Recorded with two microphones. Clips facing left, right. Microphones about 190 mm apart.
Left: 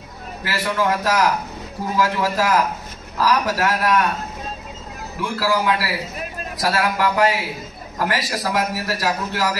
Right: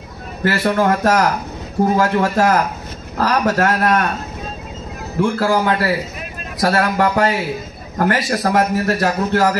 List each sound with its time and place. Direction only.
0.4 s a man's voice: 50° right (ahead or behind)
5.2 s a man's voice: 55° right (ahead or behind)